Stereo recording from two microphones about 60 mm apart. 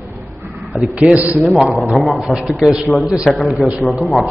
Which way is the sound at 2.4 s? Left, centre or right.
Centre.